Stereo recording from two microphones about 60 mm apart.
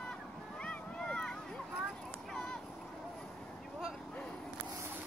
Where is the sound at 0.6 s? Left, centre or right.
Centre.